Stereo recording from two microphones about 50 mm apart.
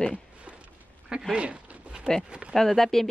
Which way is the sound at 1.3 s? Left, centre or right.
Right.